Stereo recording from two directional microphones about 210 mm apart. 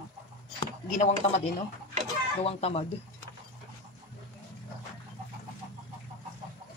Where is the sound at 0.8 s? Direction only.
40° left (ahead or behind).